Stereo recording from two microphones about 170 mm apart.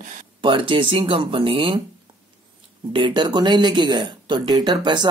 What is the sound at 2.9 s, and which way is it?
A woman's voice, 30° right (ahead or behind).